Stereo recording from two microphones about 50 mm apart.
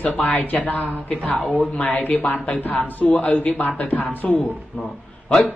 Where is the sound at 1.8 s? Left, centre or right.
Left.